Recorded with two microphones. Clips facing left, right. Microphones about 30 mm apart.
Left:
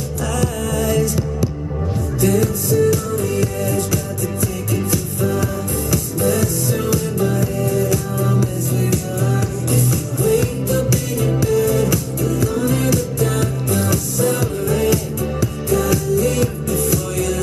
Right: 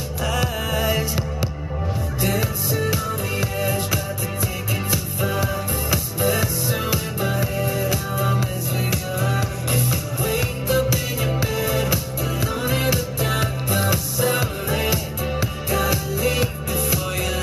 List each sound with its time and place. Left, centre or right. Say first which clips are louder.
0.4 s music: left 4 dB; right